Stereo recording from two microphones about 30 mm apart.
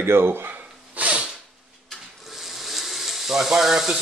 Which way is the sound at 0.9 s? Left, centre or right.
Right.